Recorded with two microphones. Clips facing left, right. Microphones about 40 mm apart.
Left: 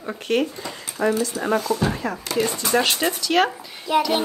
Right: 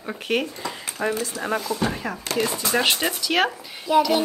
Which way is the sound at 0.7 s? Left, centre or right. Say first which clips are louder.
Left 4 dB; centre.